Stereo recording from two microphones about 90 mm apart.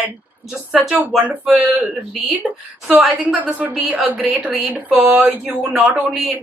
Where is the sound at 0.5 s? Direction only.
10° right (ahead or behind).